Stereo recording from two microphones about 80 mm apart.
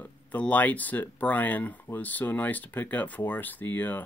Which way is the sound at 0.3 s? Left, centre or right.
Centre.